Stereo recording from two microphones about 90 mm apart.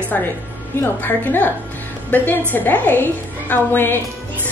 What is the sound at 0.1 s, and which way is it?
A woman's voice, 20° left (ahead or behind).